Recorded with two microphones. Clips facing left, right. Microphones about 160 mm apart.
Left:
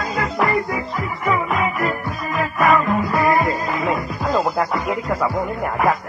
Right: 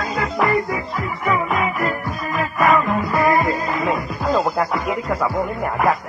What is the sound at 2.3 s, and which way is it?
Music, centre (ahead or behind).